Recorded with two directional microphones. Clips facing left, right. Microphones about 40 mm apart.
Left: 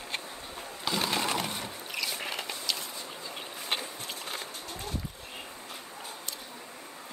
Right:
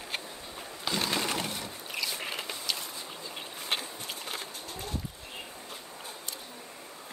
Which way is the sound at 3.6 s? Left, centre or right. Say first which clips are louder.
Even; centre.